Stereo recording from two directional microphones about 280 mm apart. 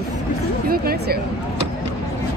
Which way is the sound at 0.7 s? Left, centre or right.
Right.